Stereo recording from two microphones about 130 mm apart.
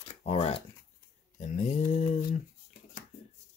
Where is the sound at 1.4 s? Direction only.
60° left (ahead or behind).